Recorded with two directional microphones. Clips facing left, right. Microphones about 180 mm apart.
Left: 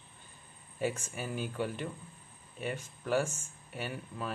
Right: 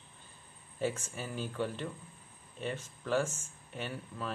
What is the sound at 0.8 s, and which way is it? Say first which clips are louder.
Speech: left 1 dB; 15° left (ahead or behind).